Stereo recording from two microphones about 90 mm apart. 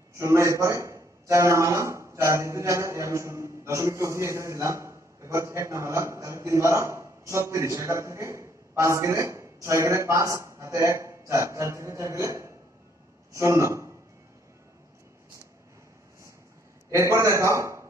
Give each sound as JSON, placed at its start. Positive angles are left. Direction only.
{"t": 0.2, "sound": "a man's voice", "side_deg": -35}
{"t": 16.9, "sound": "a man's voice", "side_deg": -35}